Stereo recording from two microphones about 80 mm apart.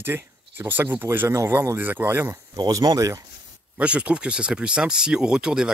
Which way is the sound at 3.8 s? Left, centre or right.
Centre.